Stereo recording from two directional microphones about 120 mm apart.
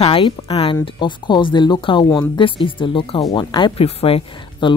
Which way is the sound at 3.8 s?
50° left (ahead or behind).